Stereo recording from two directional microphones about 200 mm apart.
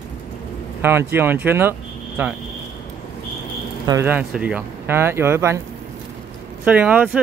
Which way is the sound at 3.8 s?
10° right (ahead or behind).